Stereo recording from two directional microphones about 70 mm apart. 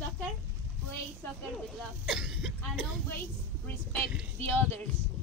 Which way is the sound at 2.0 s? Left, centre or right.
Centre.